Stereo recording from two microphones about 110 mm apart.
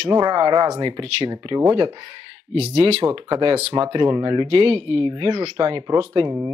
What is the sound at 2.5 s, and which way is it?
Speech, 60° right (ahead or behind).